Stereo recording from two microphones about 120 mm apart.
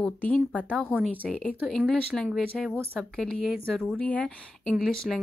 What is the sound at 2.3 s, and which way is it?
Speech, centre (ahead or behind).